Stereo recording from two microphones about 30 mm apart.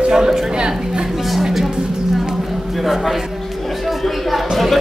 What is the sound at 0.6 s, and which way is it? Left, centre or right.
Music, right.